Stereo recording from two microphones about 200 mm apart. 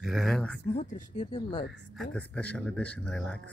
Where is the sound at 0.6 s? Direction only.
30° left (ahead or behind).